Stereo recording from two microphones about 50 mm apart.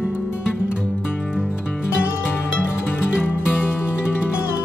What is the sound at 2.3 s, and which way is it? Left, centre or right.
Music, left.